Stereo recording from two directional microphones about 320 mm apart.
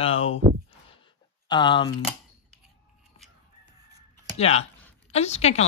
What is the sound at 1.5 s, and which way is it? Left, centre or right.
Speech, centre.